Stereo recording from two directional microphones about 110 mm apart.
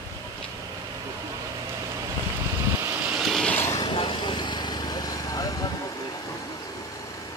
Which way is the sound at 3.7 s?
50° left (ahead or behind).